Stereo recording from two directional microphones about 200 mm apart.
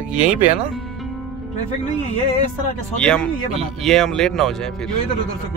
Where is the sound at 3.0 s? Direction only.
5° left (ahead or behind).